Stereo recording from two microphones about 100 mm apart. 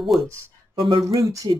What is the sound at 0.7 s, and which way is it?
Speech, 50° right (ahead or behind).